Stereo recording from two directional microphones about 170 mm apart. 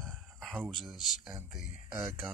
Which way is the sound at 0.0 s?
Centre (ahead or behind).